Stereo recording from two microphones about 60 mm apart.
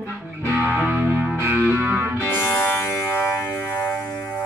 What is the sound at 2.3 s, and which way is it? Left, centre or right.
Music, left.